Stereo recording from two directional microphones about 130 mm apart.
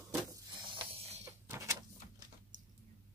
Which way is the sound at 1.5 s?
20° right (ahead or behind).